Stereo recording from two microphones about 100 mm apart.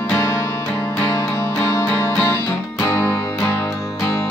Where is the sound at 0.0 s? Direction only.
25° left (ahead or behind).